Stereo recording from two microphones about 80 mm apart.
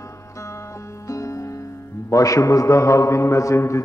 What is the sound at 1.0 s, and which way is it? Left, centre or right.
Music, left.